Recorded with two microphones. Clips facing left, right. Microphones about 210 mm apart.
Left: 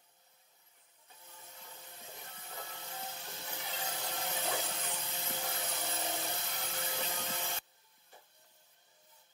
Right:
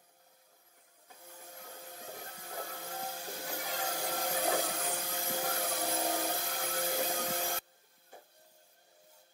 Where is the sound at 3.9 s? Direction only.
50° right (ahead or behind).